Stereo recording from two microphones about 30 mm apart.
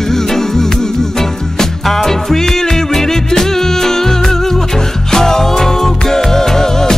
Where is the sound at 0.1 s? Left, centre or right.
Centre.